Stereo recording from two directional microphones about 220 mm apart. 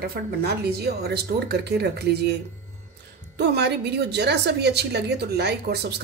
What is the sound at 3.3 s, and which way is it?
A woman's voice, 50° right (ahead or behind).